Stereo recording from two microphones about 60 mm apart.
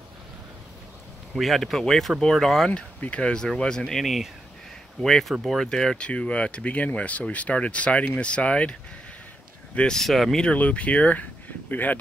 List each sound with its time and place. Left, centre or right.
1.4 s speech: centre
2.7 s speech: left; by 4.3 s centre
5.0 s speech: centre
9.8 s speech: centre
10.4 s speech: left